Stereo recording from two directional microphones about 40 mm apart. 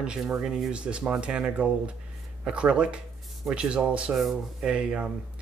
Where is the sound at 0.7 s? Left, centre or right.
Right.